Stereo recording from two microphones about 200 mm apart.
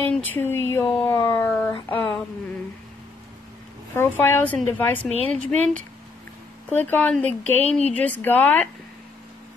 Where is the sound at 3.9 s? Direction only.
10° left (ahead or behind).